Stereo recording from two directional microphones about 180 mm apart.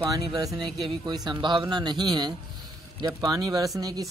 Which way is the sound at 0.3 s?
20° right (ahead or behind).